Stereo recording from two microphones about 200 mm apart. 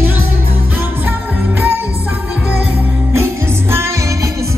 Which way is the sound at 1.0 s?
10° right (ahead or behind).